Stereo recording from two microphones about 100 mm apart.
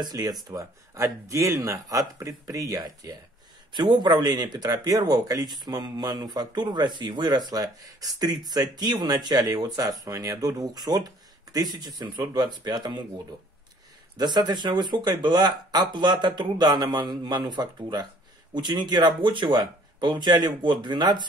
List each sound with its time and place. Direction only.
0.0 s speech: 40° right (ahead or behind)
3.7 s speech: 50° right (ahead or behind)